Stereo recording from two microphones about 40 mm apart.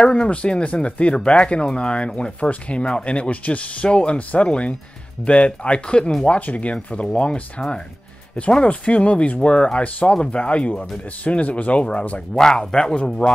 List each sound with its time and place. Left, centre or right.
0.0 s speech: left
12.4 s speech: centre